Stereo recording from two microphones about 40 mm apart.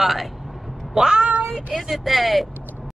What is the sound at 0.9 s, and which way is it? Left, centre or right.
Meow, centre.